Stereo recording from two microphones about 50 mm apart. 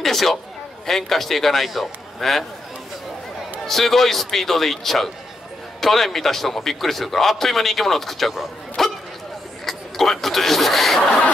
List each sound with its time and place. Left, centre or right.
0.0 s a sound: centre
0.8 s a man's voice: centre
3.6 s a man's voice: centre
11.1 s speech: left